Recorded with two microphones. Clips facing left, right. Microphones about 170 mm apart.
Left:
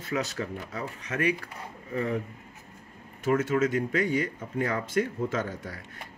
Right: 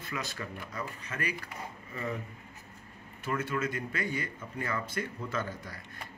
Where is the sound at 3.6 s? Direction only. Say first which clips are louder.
Left 8 dB; 45° left (ahead or behind).